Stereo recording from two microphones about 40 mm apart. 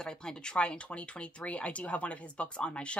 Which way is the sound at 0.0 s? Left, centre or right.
Left.